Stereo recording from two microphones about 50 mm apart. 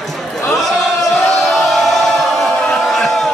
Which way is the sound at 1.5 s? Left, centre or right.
Centre.